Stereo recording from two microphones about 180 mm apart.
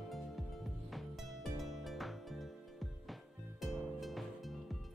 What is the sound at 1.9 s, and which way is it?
Music, centre (ahead or behind).